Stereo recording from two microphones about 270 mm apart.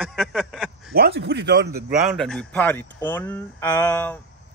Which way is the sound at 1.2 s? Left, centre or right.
Right.